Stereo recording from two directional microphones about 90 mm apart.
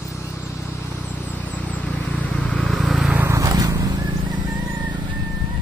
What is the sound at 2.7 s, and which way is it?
Vehicle, centre (ahead or behind).